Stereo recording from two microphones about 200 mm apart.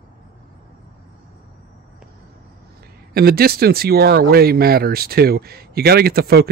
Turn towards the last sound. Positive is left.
turn(degrees=-50)  # may be behind; listen again after turning